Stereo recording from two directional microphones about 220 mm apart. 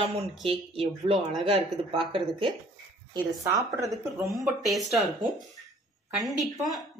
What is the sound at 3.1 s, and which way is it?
Speech, 15° right (ahead or behind).